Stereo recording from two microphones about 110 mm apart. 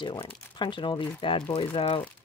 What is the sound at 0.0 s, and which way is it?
Speech, 45° left (ahead or behind).